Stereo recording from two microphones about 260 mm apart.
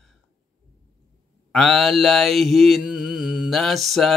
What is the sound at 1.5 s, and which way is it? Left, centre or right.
Speech, centre.